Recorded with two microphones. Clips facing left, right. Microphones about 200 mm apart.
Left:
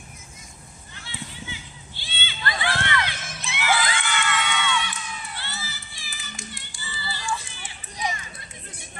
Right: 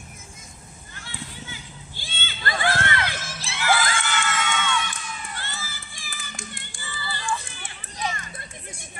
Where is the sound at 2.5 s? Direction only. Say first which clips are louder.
Right 3 dB; 45° right (ahead or behind).